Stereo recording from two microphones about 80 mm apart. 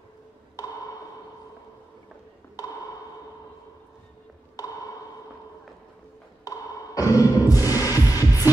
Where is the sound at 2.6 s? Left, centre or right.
Left.